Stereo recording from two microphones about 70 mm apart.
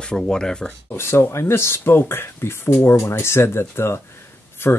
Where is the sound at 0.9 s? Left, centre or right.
Left.